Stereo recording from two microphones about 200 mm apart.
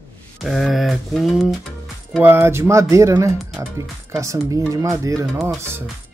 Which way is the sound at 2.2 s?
10° right (ahead or behind).